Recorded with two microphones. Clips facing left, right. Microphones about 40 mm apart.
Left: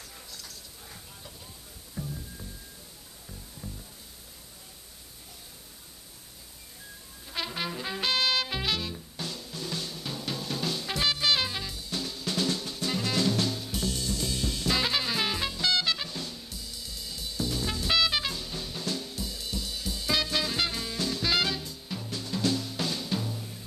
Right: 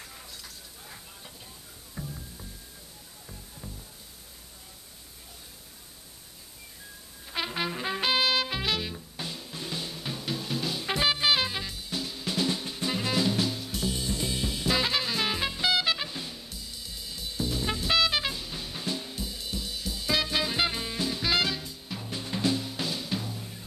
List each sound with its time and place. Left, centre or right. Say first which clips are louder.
2.0 s music: left 2 dB; centre
7.2 s brass instrument: right 2 dB; centre
7.7 s music: right 2 dB; centre
8.8 s music: even; centre
10.9 s drum kit: right 2 dB; centre
13.8 s music: right 2 dB; centre
15.5 s music: right 2 dB; centre
17.8 s drum kit: right 1 dB; centre
22.1 s music: right 1 dB; right; by 23.3 s centre